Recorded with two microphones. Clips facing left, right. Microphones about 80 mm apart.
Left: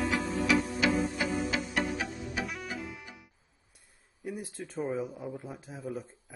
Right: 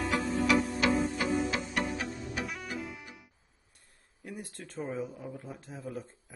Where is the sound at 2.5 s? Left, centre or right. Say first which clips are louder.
Even; centre.